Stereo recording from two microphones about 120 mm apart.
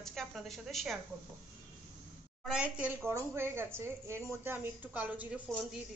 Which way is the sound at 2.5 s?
10° right (ahead or behind).